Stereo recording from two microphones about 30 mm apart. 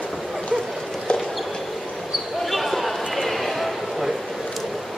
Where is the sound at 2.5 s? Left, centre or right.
Centre.